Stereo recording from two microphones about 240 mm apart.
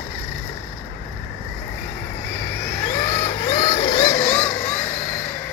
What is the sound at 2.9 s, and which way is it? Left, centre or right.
Vehicle, centre.